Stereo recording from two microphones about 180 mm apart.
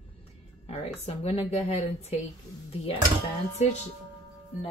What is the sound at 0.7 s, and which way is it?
A woman's voice, 35° left (ahead or behind).